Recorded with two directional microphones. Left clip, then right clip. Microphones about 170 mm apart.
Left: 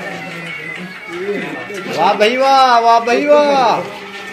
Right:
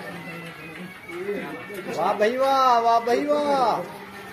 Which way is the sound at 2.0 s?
5° right (ahead or behind).